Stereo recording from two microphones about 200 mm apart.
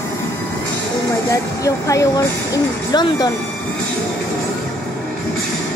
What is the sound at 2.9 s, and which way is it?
Speech, 20° left (ahead or behind).